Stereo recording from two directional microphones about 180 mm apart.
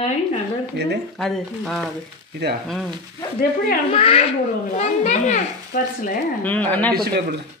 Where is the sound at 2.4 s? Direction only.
65° right (ahead or behind).